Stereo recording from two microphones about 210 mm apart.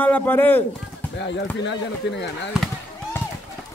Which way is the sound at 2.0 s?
55° left (ahead or behind).